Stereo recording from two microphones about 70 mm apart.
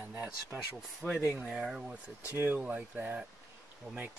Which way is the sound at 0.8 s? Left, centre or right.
Centre.